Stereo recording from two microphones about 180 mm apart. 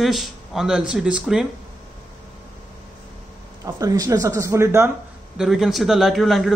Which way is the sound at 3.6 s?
20° right (ahead or behind).